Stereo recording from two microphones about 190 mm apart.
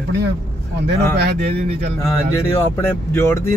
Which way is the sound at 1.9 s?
15° left (ahead or behind).